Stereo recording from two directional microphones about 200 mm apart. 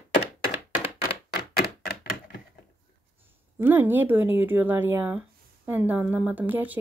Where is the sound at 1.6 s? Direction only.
50° left (ahead or behind).